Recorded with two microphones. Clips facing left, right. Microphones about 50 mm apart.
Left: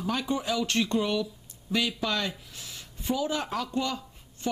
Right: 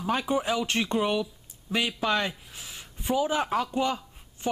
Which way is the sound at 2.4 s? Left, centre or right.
Centre.